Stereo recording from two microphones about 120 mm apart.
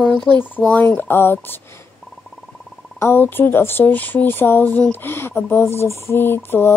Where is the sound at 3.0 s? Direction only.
20° left (ahead or behind).